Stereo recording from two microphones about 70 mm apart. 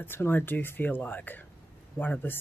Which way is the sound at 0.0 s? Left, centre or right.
Left.